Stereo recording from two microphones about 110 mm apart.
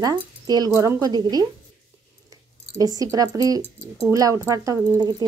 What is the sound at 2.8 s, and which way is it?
Speech, 35° right (ahead or behind).